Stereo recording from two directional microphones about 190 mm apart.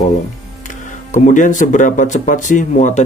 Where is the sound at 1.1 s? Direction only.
40° left (ahead or behind).